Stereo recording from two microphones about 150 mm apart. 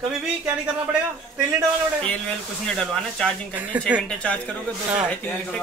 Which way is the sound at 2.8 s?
5° left (ahead or behind).